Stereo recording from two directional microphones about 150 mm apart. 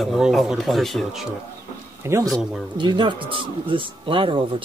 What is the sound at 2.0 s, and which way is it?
Speech, 20° right (ahead or behind).